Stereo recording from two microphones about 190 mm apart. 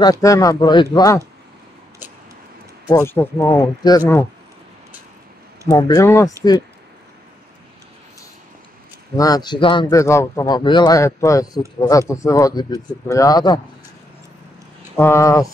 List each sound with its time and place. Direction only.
0.0 s a man's voice: 15° left (ahead or behind)
2.9 s a man's voice: 15° left (ahead or behind)
5.7 s a man's voice: 20° left (ahead or behind)
9.1 s a man's voice: 20° left (ahead or behind)
15.0 s a man's voice: 15° left (ahead or behind)